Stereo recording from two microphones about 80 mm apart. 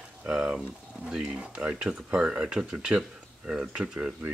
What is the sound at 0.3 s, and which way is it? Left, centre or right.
Speech, centre.